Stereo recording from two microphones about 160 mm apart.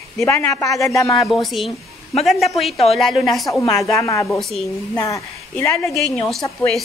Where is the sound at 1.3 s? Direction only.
Centre (ahead or behind).